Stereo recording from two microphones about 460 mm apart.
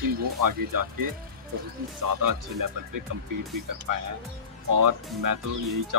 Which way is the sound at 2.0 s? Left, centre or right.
Right.